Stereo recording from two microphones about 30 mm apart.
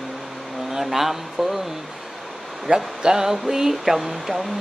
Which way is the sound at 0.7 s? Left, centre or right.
Centre.